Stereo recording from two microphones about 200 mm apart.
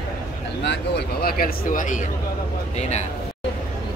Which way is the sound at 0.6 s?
60° left (ahead or behind).